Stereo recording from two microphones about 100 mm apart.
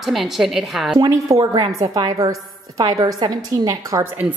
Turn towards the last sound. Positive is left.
turn(degrees=-35)  # may be behind; listen again after turning